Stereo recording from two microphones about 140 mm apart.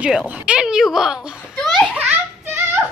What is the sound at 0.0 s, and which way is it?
Speech, 5° right (ahead or behind).